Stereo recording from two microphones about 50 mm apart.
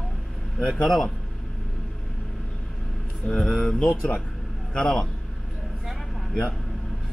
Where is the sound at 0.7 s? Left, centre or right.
Centre.